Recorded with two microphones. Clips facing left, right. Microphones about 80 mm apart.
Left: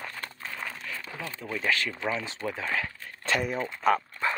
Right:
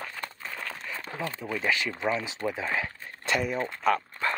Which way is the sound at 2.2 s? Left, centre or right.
Centre.